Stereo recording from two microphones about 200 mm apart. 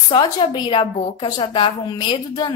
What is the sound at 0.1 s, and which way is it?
A woman's voice, 25° left (ahead or behind).